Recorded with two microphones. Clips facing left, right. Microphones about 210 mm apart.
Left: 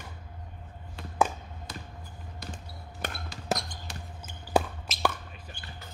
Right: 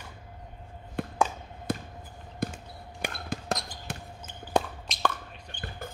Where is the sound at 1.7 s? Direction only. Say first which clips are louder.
Right 13 dB; 55° right (ahead or behind).